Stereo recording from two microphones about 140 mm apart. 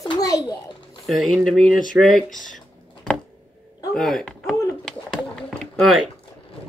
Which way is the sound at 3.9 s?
5° left (ahead or behind).